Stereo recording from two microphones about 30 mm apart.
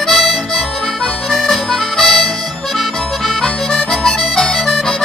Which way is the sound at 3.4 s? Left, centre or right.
Centre.